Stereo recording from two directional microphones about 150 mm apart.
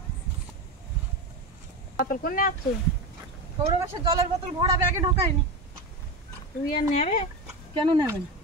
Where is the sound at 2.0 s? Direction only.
70° left (ahead or behind).